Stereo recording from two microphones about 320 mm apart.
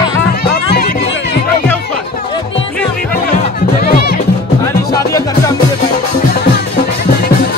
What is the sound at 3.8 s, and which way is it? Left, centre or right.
Music, left.